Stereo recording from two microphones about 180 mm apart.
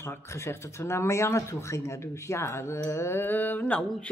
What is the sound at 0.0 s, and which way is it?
Speech, 15° left (ahead or behind).